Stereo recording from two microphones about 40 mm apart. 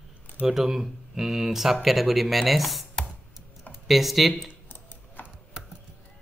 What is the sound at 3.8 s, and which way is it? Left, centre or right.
Speech, centre.